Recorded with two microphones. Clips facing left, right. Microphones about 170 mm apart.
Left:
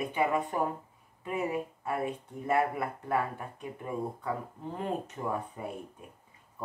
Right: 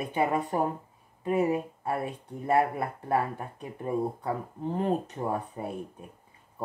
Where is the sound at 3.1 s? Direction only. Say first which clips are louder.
Right 4 dB; 35° right (ahead or behind).